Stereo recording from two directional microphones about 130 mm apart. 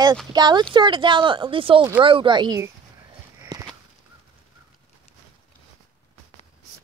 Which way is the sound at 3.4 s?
25° right (ahead or behind).